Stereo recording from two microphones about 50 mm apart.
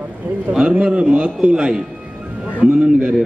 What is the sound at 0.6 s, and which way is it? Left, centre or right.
A man's voice, centre.